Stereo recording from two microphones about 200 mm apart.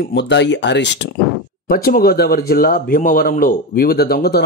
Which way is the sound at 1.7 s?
45° left (ahead or behind).